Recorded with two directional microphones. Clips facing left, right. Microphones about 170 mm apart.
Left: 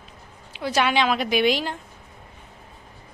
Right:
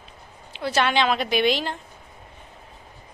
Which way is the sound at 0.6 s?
10° left (ahead or behind).